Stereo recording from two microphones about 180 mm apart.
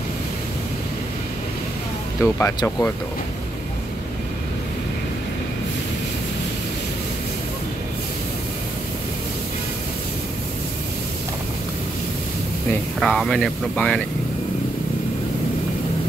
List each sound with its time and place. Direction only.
2.2 s speech: 15° left (ahead or behind)
13.0 s speech: 5° left (ahead or behind)